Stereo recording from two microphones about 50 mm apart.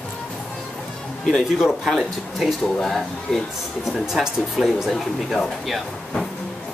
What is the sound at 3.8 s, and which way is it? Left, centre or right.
Speech, centre.